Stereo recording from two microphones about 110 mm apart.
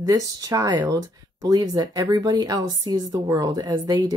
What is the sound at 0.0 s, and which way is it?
Speech, 35° right (ahead or behind).